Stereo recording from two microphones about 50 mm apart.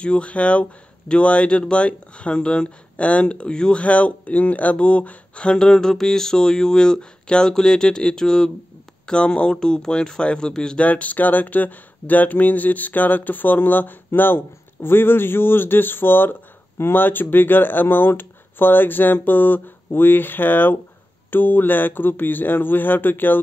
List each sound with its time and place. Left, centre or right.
0.0 s speech: left
10.8 s speech: left